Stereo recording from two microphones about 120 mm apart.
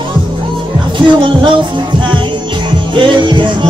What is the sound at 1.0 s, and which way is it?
Music, 40° right (ahead or behind).